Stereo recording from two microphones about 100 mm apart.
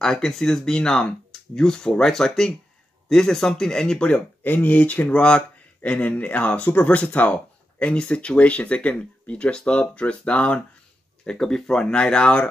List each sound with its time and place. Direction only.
0.0 s speech: 5° left (ahead or behind)